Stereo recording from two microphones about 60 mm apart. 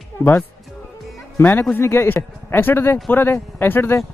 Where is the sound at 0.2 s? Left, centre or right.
Left.